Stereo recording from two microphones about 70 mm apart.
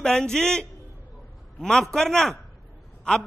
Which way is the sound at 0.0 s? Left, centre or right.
Centre.